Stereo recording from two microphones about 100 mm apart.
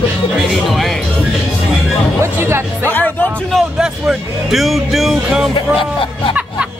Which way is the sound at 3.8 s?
5° right (ahead or behind).